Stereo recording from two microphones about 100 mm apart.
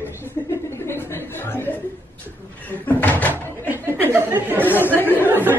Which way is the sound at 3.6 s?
20° right (ahead or behind).